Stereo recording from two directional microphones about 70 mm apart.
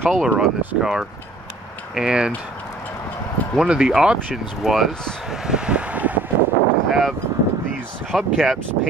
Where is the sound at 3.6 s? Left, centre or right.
Centre.